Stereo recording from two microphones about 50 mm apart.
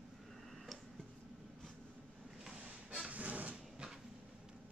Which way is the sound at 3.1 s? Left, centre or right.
Right.